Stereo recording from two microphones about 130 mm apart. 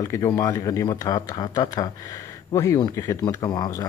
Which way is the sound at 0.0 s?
25° left (ahead or behind).